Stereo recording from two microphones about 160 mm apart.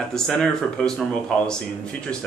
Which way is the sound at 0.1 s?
5° left (ahead or behind).